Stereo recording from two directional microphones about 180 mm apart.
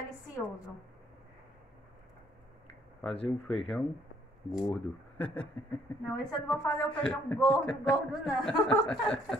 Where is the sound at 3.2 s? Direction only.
Centre (ahead or behind).